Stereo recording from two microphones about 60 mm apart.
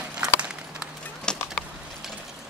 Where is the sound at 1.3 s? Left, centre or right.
Centre.